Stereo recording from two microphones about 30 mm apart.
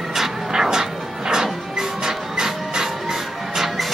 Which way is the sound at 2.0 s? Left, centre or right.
Centre.